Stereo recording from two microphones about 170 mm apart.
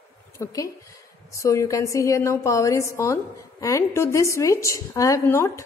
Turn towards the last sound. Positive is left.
turn(degrees=15)  # may be behind; listen again after turning